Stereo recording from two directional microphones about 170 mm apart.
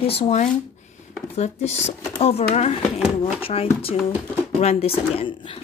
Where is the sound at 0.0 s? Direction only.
35° left (ahead or behind).